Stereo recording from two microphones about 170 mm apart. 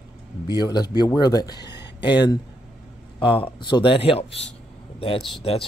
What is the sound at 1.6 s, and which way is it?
Speech, 90° left.